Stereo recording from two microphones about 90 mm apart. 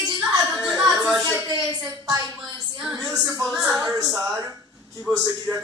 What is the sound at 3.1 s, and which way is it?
Speech, 40° right (ahead or behind).